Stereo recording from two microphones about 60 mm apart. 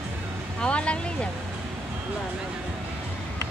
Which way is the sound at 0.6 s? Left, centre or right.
Centre.